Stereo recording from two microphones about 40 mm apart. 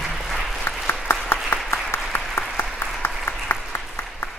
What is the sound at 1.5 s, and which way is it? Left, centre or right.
Applause, left.